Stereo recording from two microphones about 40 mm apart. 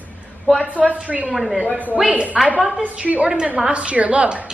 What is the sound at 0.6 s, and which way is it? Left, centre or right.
A woman's voice, right.